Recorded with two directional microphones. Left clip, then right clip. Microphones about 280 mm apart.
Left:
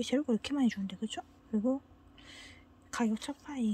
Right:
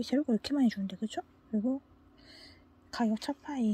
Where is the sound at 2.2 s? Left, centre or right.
Centre.